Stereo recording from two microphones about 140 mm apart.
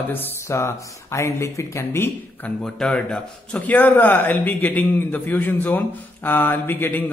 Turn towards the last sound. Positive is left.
turn(degrees=15)  # may be behind; listen again after turning